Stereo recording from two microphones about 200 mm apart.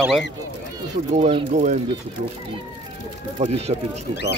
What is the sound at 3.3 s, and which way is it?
Speech, 30° right (ahead or behind).